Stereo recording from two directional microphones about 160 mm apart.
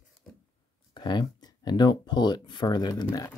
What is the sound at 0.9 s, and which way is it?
Speech, 25° left (ahead or behind).